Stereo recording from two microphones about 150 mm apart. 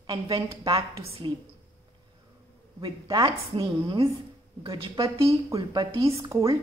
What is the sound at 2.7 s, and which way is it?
A woman's voice, 25° right (ahead or behind).